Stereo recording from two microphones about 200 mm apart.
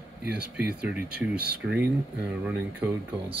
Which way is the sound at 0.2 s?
55° right (ahead or behind).